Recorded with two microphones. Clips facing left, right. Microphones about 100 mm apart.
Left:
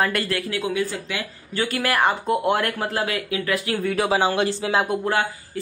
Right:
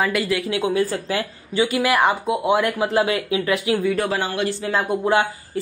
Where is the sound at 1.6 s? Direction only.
15° right (ahead or behind).